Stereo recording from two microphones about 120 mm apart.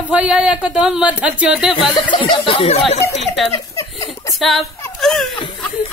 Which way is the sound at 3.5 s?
25° left (ahead or behind).